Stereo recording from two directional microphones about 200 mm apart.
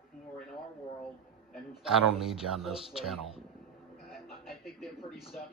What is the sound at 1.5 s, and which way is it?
Speech, centre (ahead or behind).